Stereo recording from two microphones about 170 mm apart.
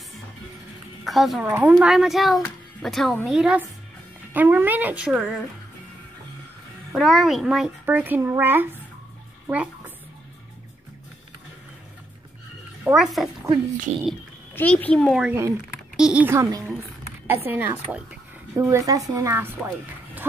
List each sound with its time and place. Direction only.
1.0 s a child's voice: centre (ahead or behind)
6.9 s a child's voice: centre (ahead or behind)
9.5 s a sound: 10° right (ahead or behind)
12.8 s a child's voice: 5° right (ahead or behind)
13.9 s speech: 40° right (ahead or behind)
14.5 s a child's voice: 10° left (ahead or behind)
15.2 s a child's voice: 15° right (ahead or behind)